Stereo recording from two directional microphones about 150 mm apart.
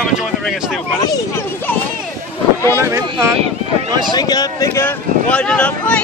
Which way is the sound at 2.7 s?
20° right (ahead or behind).